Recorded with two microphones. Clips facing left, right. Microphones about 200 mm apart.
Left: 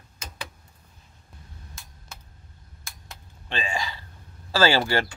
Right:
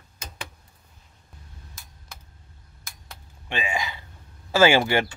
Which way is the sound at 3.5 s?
10° right (ahead or behind).